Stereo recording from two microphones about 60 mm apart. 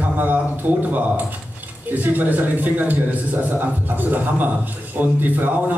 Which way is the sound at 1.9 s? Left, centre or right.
Right.